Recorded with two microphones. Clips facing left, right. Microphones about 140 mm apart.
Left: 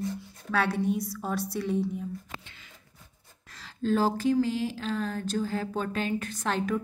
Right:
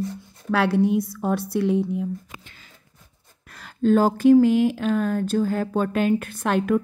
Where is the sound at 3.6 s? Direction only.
55° right (ahead or behind).